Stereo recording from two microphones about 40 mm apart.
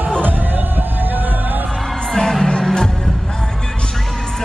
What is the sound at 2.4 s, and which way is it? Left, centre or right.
Music, centre.